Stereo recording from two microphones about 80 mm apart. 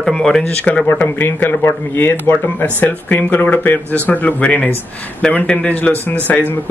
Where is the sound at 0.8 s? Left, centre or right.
Left.